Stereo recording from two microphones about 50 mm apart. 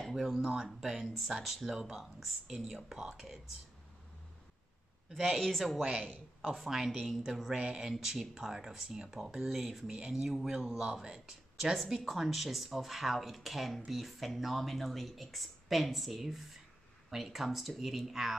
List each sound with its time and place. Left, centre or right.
0.7 s speech: centre
5.1 s speech: centre
5.8 s speech: right
6.5 s speech: centre
7.5 s speech: centre
7.8 s speech: centre